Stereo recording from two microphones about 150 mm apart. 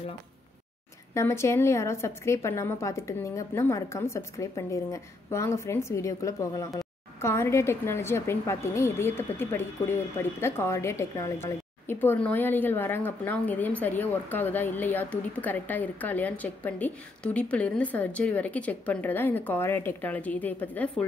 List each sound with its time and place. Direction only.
1.1 s a woman's voice: 20° left (ahead or behind)